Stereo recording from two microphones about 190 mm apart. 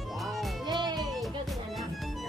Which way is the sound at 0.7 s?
20° right (ahead or behind).